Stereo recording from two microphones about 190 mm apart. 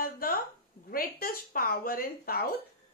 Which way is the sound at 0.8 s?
50° left (ahead or behind).